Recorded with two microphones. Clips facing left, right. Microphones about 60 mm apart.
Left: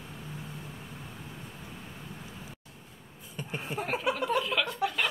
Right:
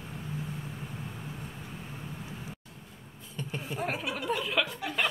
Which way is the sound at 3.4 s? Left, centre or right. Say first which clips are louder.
Right 1 dB; centre.